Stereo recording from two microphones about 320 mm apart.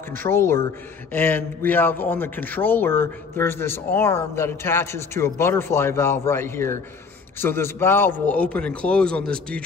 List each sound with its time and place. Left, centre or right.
0.1 s a man's voice: centre